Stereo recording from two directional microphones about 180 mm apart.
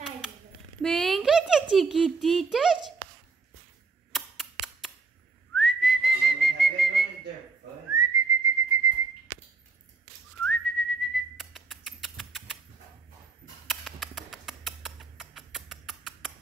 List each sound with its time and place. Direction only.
0.8 s a child's voice: centre (ahead or behind)
4.1 s tick: centre (ahead or behind)
5.5 s whistling: centre (ahead or behind)
7.9 s whistling: 20° right (ahead or behind)
10.4 s whistling: 5° left (ahead or behind)
13.7 s a sound: centre (ahead or behind)